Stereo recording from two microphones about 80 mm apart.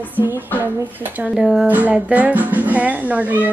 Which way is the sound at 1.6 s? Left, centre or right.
Centre.